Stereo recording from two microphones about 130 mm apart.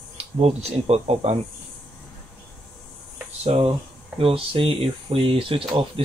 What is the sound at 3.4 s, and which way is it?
Speech, 50° right (ahead or behind).